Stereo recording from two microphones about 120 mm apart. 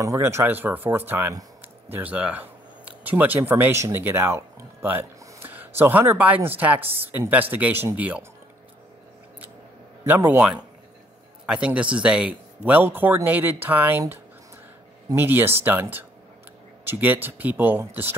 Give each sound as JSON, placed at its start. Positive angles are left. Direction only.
{"t": 0.0, "sound": "speech", "side_deg": -25}
{"t": 10.0, "sound": "speech", "side_deg": -15}